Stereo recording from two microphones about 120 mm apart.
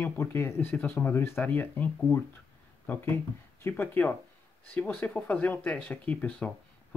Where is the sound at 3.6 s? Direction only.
15° left (ahead or behind).